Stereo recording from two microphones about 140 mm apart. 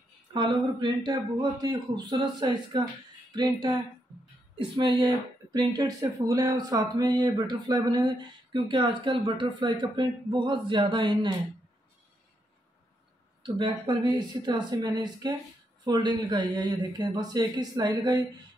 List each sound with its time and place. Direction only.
0.3 s speech: 35° right (ahead or behind)
13.4 s speech: 35° right (ahead or behind)